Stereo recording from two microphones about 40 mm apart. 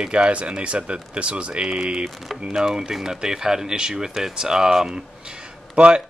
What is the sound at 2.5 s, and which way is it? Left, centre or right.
Speech, centre.